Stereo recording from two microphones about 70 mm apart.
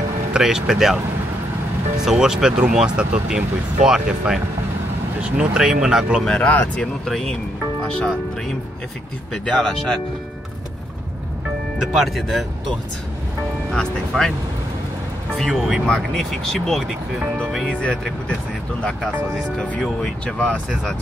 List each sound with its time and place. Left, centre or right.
0.3 s speech: centre
2.0 s speech: centre
6.2 s speech: centre
6.5 s speech: left
6.8 s speech: centre
9.3 s speech: centre
11.9 s speech: centre
13.7 s speech: centre
15.3 s speech: centre
17.6 s speech: centre